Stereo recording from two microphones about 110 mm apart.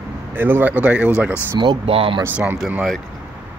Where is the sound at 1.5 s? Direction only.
50° right (ahead or behind).